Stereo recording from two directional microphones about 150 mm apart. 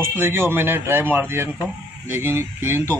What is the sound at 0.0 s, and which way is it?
Speech, 15° right (ahead or behind).